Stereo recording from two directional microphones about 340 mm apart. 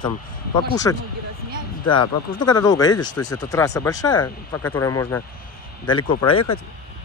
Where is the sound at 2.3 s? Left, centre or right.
Centre.